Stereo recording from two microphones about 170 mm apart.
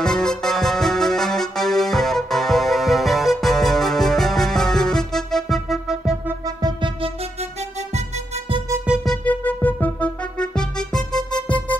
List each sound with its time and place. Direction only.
0.0 s music: 5° left (ahead or behind)
6.4 s music: 25° right (ahead or behind)
8.8 s music: centre (ahead or behind)